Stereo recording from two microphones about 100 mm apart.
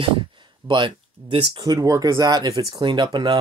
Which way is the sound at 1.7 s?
35° right (ahead or behind).